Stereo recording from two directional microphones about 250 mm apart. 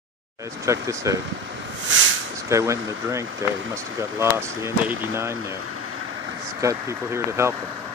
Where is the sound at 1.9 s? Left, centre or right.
Right.